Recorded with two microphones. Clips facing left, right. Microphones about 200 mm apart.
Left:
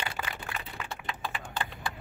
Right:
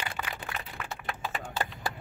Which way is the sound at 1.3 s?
45° right (ahead or behind).